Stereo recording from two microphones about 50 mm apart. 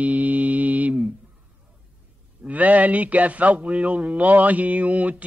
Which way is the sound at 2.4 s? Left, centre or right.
Right.